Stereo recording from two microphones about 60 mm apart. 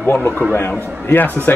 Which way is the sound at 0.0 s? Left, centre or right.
Left.